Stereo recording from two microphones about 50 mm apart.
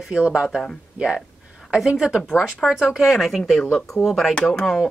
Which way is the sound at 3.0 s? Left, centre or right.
Centre.